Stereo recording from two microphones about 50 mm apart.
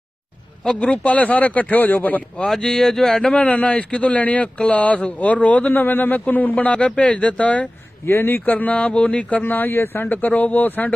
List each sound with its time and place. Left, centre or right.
0.7 s speech: left
2.5 s speech: centre; by 7.7 s left
8.0 s speech: left
9.4 s speech: left